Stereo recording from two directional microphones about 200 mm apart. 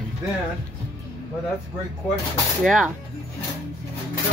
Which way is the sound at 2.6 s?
Centre (ahead or behind).